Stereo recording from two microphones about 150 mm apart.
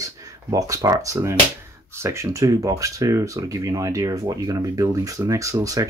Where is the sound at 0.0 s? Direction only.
25° right (ahead or behind).